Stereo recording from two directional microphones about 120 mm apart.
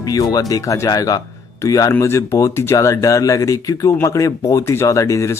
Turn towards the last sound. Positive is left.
turn(degrees=25)  # may be behind; listen again after turning